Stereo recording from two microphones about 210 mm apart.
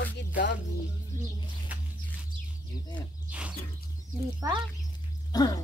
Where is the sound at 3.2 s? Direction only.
5° right (ahead or behind).